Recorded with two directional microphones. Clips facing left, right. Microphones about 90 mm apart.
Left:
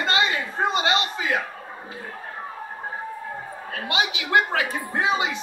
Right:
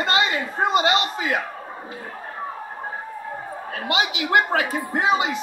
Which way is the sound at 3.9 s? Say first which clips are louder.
Right 2 dB; 30° right (ahead or behind).